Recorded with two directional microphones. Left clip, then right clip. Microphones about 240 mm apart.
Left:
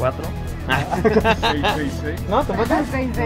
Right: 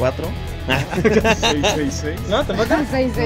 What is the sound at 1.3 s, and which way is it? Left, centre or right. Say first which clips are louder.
Speech: right 1 dB; right.